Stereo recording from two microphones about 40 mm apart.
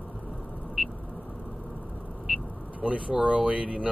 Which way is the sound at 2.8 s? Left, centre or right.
Right.